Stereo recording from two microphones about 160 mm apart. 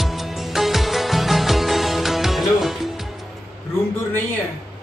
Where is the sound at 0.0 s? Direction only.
Centre (ahead or behind).